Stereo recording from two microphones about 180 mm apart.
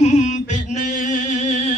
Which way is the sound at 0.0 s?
40° left (ahead or behind).